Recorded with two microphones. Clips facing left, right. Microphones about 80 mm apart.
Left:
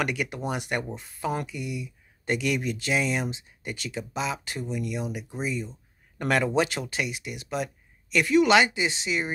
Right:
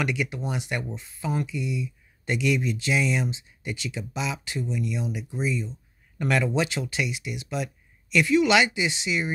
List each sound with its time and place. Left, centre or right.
0.0 s speech: left